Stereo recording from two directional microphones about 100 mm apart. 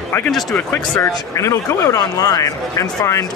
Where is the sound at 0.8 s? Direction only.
35° left (ahead or behind).